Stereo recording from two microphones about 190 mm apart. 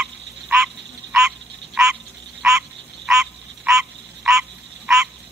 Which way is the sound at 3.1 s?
5° right (ahead or behind).